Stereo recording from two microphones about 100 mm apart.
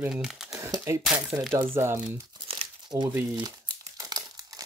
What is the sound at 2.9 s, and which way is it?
Speech, 35° right (ahead or behind).